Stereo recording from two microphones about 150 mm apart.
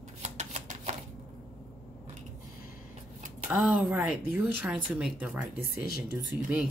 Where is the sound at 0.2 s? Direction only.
50° right (ahead or behind).